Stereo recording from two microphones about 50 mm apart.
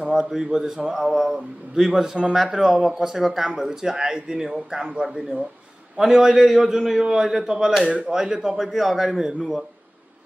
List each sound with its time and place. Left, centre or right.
0.0 s speech: centre
7.8 s speech: right
8.1 s a man's voice: centre